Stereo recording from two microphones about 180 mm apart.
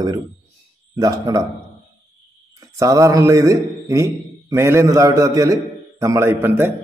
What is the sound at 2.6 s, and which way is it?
A man's voice, 20° right (ahead or behind).